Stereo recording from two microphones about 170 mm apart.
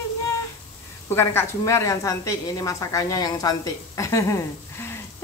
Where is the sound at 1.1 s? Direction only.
15° left (ahead or behind).